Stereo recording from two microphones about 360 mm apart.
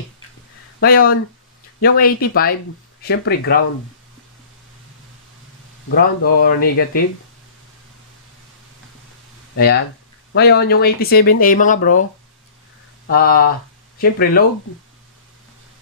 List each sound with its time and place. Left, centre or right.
0.7 s speech: left
5.9 s speech: left
9.6 s speech: left
13.0 s speech: left